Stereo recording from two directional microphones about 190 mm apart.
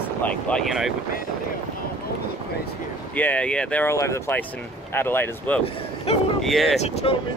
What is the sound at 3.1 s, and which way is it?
Speech, 10° left (ahead or behind).